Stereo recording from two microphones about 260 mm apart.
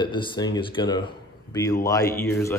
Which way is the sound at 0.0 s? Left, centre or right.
Centre.